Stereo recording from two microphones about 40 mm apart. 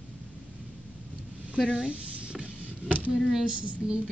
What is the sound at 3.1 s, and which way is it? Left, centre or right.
Speech, centre.